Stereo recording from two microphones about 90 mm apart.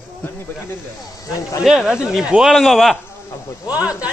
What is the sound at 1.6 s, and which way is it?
Speech, 5° right (ahead or behind).